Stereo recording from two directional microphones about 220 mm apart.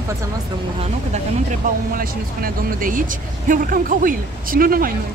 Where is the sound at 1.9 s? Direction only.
40° right (ahead or behind).